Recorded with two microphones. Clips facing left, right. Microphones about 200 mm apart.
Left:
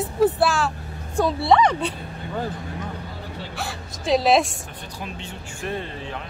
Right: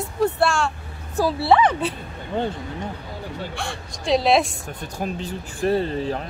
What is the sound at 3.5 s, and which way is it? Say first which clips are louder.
A woman's voice: right 1 dB; centre (ahead or behind).